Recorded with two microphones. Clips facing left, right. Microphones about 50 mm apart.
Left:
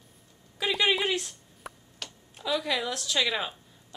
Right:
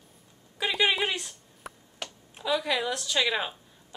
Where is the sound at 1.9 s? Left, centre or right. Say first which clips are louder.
Right 3 dB; centre.